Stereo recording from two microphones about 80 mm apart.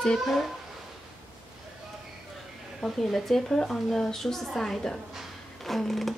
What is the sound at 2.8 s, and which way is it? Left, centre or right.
A woman's voice, centre.